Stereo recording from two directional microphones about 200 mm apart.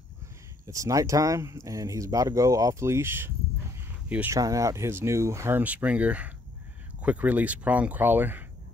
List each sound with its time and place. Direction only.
0.7 s speech: 15° right (ahead or behind)